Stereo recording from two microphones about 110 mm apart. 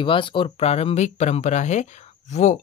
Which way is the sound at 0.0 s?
50° left (ahead or behind).